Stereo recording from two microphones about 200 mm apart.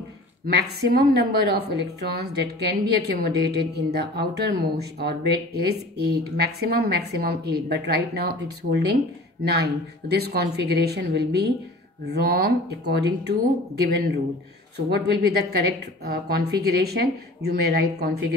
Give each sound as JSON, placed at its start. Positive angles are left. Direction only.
{"t": 0.5, "sound": "a woman's voice", "side_deg": -55}
{"t": 9.4, "sound": "a woman's voice", "side_deg": -55}